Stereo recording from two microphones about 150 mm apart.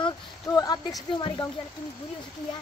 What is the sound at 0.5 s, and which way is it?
Speech, 25° left (ahead or behind).